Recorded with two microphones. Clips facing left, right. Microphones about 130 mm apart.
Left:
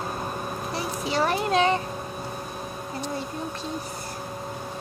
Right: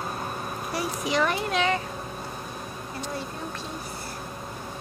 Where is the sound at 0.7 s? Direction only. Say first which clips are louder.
Right 1 dB; 30° left (ahead or behind).